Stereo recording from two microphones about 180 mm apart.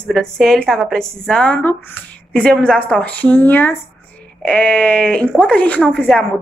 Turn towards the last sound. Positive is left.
turn(degrees=5)  # may be behind; listen again after turning